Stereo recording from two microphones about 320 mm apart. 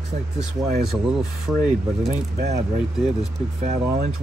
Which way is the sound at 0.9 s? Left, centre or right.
Centre.